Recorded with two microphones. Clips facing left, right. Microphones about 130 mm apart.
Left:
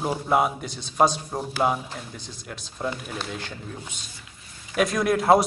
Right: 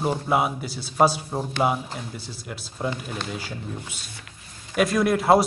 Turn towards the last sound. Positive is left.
turn(degrees=0)  # may be behind; listen again after turning